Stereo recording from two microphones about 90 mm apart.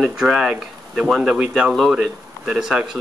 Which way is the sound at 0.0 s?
10° right (ahead or behind).